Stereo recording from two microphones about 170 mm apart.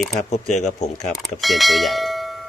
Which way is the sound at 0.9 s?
Centre (ahead or behind).